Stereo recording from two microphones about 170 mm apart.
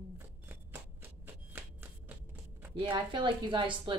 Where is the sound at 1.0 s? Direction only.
10° right (ahead or behind).